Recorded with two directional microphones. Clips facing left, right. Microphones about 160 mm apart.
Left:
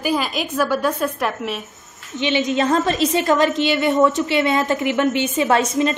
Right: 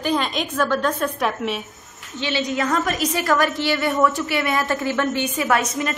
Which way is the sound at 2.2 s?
20° left (ahead or behind).